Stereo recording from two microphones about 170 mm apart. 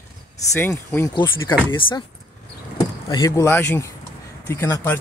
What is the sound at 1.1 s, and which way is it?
Speech, 25° left (ahead or behind).